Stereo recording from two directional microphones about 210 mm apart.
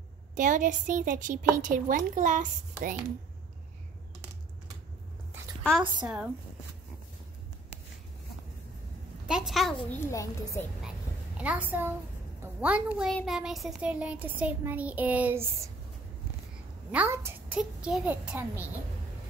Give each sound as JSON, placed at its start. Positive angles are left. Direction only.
{"t": 0.4, "sound": "a woman's voice", "side_deg": -35}
{"t": 5.6, "sound": "a woman's voice", "side_deg": 0}
{"t": 9.3, "sound": "a woman's voice", "side_deg": 0}
{"t": 10.1, "sound": "a woman's voice", "side_deg": 15}
{"t": 11.3, "sound": "child singing", "side_deg": -5}
{"t": 12.4, "sound": "a woman's voice", "side_deg": -5}
{"t": 13.1, "sound": "child singing", "side_deg": 0}
{"t": 16.9, "sound": "child singing", "side_deg": -10}